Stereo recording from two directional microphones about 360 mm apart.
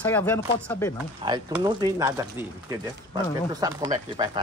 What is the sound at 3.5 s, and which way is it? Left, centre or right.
Speech, centre.